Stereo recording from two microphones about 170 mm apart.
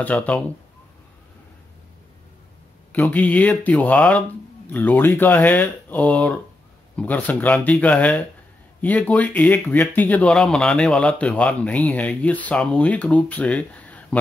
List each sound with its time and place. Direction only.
0.0 s speech: 5° left (ahead or behind)
2.9 s speech: 10° left (ahead or behind)